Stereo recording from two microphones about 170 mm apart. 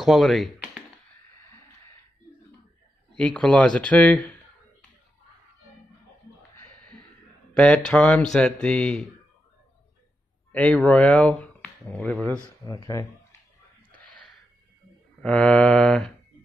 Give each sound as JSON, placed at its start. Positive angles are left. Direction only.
{"t": 0.0, "sound": "mantra", "side_deg": 0}
{"t": 3.2, "sound": "speech", "side_deg": 5}
{"t": 6.6, "sound": "a sound", "side_deg": 5}
{"t": 7.5, "sound": "speech", "side_deg": 5}
{"t": 10.5, "sound": "speech", "side_deg": 5}
{"t": 12.6, "sound": "speech", "side_deg": 20}
{"t": 13.9, "sound": "a sound", "side_deg": 10}
{"t": 15.2, "sound": "mantra", "side_deg": 5}